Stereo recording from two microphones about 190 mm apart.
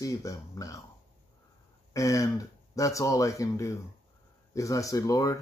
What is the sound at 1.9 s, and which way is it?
Speech, 15° left (ahead or behind).